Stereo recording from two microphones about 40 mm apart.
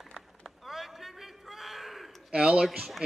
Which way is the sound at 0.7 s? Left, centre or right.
Centre.